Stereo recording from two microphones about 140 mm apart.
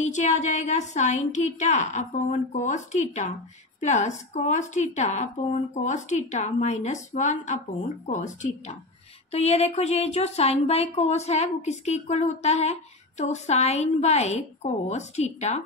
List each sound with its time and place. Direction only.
0.0 s a woman's voice: 60° left (ahead or behind)